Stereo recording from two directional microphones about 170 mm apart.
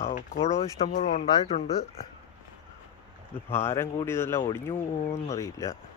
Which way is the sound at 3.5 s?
15° left (ahead or behind).